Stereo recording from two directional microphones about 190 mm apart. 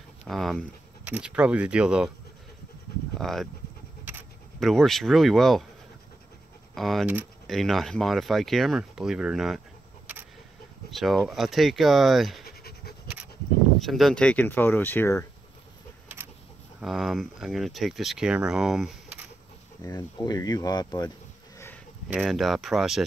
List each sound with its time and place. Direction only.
0.3 s speech: centre (ahead or behind)
3.2 s speech: centre (ahead or behind)
4.6 s speech: centre (ahead or behind)
6.7 s speech: centre (ahead or behind)
10.9 s speech: centre (ahead or behind)
12.4 s scratch: 55° left (ahead or behind)
13.7 s speech: centre (ahead or behind)
16.8 s speech: centre (ahead or behind)
19.8 s speech: 20° left (ahead or behind)
22.0 s speech: centre (ahead or behind)